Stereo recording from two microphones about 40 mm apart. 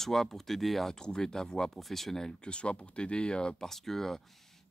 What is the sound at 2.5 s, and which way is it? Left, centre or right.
Speech, left.